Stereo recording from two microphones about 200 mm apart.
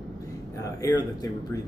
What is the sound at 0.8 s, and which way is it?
Speech, 20° left (ahead or behind).